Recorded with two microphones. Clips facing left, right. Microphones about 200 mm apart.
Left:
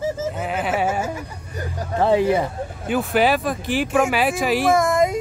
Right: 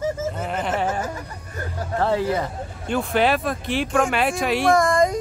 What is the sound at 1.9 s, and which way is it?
Speech, 15° left (ahead or behind).